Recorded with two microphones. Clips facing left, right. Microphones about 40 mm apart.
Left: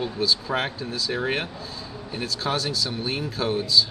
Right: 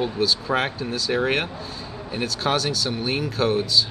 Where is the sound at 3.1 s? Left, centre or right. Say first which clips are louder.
Right 4 dB; centre.